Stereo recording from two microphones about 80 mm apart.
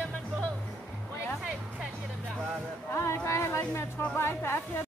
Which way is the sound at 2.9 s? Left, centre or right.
Left.